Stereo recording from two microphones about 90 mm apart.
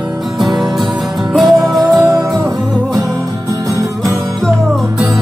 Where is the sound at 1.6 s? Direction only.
45° right (ahead or behind).